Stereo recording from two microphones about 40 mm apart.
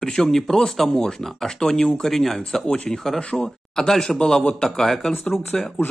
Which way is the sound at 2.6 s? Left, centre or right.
Left.